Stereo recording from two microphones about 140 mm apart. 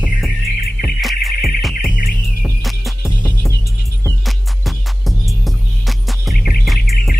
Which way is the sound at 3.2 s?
15° left (ahead or behind).